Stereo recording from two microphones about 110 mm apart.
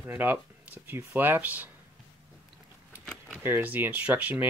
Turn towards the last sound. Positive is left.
turn(degrees=-15)  # may be behind; listen again after turning